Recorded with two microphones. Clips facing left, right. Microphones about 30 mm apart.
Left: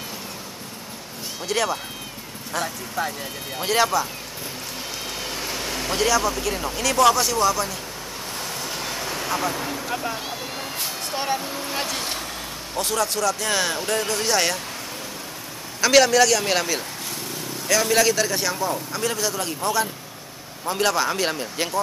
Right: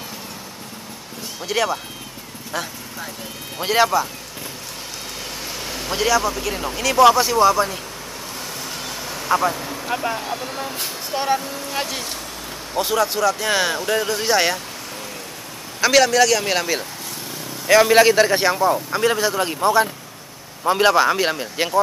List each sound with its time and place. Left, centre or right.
1.4 s speech: centre
5.4 s speech: centre
8.6 s vehicle: centre
9.5 s speech: centre
9.8 s speech: centre
10.3 s speech: centre
11.4 s speech: centre
11.7 s speech: centre
15.9 s speech: centre
17.6 s a man's voice: right